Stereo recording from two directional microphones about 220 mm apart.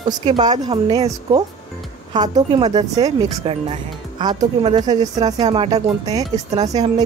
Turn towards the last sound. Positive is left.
turn(degrees=-15)  # may be behind; listen again after turning